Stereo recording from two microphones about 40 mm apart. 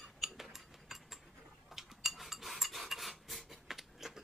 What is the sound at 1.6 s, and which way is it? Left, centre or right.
Cutlery, centre.